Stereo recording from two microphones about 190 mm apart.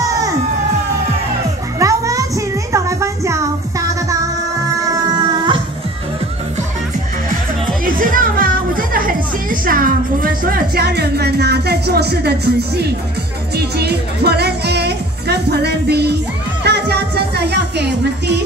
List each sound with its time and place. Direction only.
0.0 s music: 20° right (ahead or behind)
1.8 s music: 15° right (ahead or behind)
7.8 s speech: 45° right (ahead or behind); by 18.3 s 65° right (ahead or behind)